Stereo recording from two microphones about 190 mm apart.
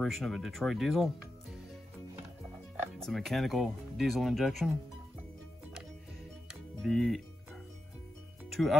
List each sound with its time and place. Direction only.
0.0 s speech: centre (ahead or behind)
3.0 s speech: centre (ahead or behind)
6.8 s speech: centre (ahead or behind)
8.5 s music: centre (ahead or behind)